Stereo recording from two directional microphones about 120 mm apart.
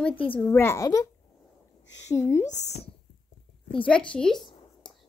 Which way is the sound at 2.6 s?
65° left (ahead or behind).